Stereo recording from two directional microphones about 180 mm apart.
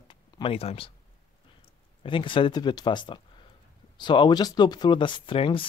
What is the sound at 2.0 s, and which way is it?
Speech, 30° left (ahead or behind).